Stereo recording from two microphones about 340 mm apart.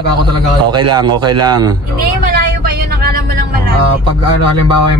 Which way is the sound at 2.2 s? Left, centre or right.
Right.